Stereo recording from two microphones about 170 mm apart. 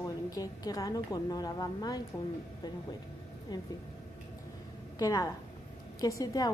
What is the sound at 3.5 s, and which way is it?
Speech, 25° left (ahead or behind).